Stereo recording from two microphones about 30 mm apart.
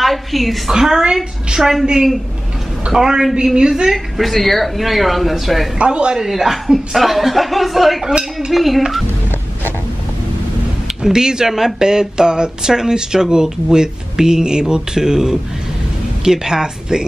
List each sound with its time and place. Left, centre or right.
0.0 s a woman's voice: centre
0.7 s a woman's voice: centre
2.9 s a woman's voice: centre
3.5 s speech: right
3.9 s speech: centre
5.8 s speech: right
6.1 s speech: centre
8.1 s speech: right
8.5 s speech: centre
11.1 s speech: right
11.9 s speech: right